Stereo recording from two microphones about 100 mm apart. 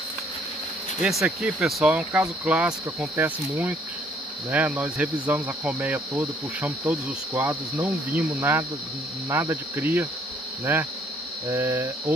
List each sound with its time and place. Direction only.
1.0 s speech: 10° right (ahead or behind)